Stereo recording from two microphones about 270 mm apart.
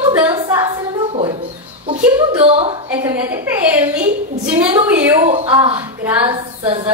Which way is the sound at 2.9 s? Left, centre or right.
Centre.